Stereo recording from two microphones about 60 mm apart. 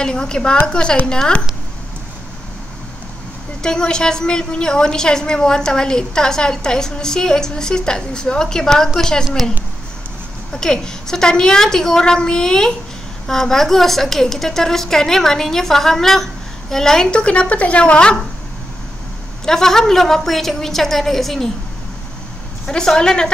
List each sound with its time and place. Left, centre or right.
0.0 s a woman's voice: centre
3.6 s a woman's voice: centre
10.5 s a woman's voice: centre
19.4 s speech: centre
22.7 s a woman's voice: centre